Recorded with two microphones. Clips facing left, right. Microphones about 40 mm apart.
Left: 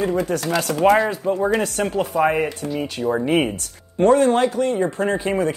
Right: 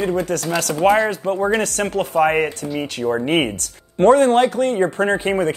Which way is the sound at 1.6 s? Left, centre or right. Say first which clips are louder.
Right 1 dB; right.